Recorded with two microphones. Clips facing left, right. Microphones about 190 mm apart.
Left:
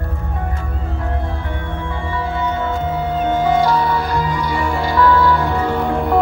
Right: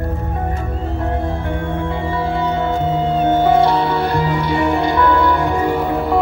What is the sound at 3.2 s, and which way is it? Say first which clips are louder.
Music: right 2 dB; 25° right (ahead or behind).